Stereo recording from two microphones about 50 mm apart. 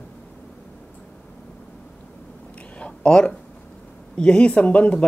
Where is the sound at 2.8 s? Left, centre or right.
Centre.